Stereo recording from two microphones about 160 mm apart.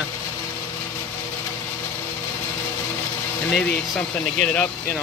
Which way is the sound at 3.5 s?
5° left (ahead or behind).